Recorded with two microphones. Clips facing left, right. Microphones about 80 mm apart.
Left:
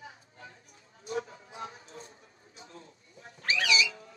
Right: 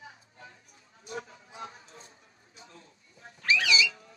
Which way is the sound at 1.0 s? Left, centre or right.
Left.